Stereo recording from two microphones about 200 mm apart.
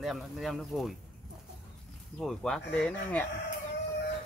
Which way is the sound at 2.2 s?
Centre (ahead or behind).